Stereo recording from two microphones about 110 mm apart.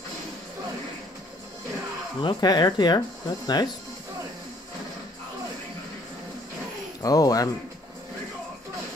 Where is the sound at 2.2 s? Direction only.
40° left (ahead or behind).